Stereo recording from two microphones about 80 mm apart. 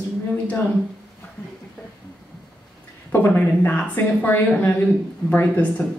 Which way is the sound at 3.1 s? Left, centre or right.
Left.